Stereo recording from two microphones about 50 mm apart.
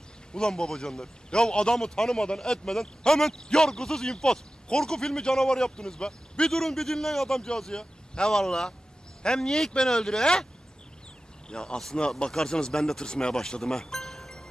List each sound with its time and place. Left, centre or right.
0.3 s speech: centre
11.4 s speech: centre